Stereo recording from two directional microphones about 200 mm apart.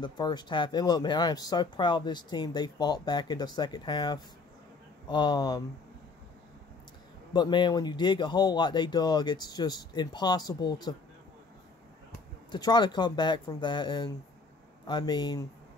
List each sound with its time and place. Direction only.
0.0 s speech: 20° left (ahead or behind)
7.3 s speech: 20° left (ahead or behind)
12.4 s speech: 20° left (ahead or behind)